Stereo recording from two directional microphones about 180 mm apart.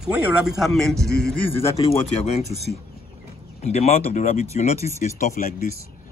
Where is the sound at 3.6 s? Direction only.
35° left (ahead or behind).